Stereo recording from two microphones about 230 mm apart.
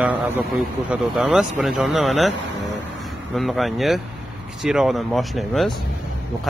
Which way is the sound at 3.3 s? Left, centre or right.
Centre.